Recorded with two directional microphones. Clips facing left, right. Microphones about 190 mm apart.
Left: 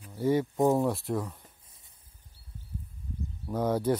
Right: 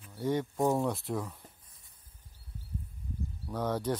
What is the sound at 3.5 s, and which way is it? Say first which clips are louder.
Speech: left 5 dB; 10° left (ahead or behind).